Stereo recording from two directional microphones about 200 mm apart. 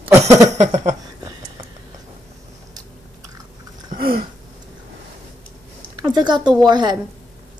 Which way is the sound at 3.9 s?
45° right (ahead or behind).